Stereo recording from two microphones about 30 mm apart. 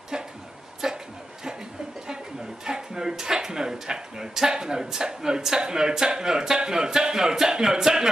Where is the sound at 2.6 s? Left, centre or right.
Right.